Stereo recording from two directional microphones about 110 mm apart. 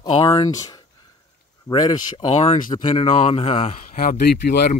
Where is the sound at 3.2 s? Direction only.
65° left (ahead or behind).